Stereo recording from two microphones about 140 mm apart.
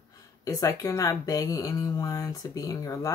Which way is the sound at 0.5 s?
25° left (ahead or behind).